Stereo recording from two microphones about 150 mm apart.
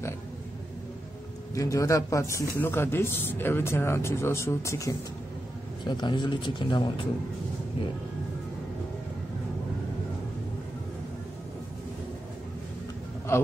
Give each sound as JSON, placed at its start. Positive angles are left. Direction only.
{"t": 1.5, "sound": "a man's voice", "side_deg": 20}
{"t": 13.3, "sound": "a man's voice", "side_deg": 20}